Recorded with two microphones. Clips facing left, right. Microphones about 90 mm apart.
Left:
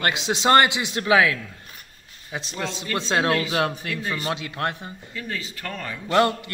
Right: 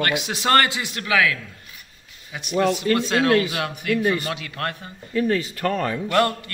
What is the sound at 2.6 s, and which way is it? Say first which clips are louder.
A man's voice: right 9 dB; 25° left (ahead or behind).